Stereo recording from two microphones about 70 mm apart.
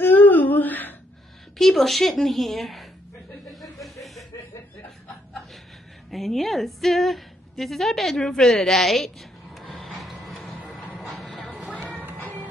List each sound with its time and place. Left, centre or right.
0.0 s humming: left
1.6 s a woman's voice: centre
3.4 s chuckle: centre
6.0 s a woman's voice: centre
9.6 s a sound: centre
11.7 s music: centre